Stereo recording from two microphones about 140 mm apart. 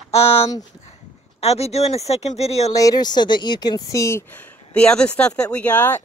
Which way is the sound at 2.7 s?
25° left (ahead or behind).